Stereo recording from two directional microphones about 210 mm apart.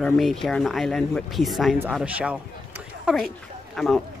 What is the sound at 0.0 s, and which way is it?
Speech, 5° left (ahead or behind).